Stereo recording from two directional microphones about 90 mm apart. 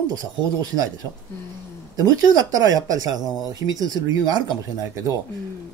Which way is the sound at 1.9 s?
40° right (ahead or behind).